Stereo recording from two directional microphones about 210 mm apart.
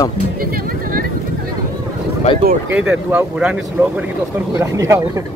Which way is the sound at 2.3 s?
25° left (ahead or behind).